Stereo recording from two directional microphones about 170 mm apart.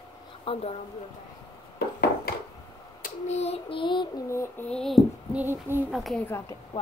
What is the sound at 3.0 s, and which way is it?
Child singing, 40° left (ahead or behind).